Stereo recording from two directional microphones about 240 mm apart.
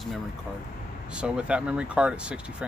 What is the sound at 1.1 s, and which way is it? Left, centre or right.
Speech, centre.